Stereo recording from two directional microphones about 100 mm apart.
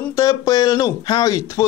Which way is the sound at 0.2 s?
35° left (ahead or behind).